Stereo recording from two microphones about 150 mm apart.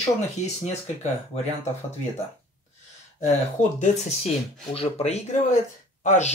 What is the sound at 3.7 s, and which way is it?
Speech, 55° left (ahead or behind).